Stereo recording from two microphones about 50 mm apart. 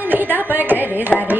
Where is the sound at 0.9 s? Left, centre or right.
Right.